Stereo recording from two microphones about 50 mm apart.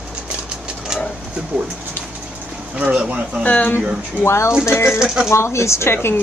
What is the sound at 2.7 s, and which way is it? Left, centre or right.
Speech, right.